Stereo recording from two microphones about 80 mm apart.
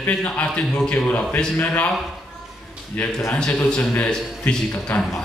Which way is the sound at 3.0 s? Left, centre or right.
Centre.